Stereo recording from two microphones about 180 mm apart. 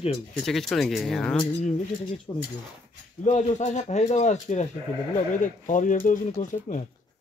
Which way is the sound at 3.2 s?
40° left (ahead or behind).